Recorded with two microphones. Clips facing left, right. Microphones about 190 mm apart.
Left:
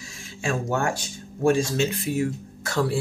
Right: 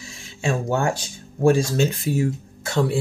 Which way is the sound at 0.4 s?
25° right (ahead or behind).